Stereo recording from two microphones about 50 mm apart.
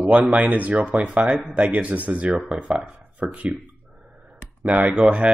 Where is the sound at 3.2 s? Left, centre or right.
Centre.